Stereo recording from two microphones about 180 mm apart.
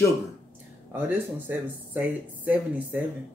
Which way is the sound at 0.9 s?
10° right (ahead or behind).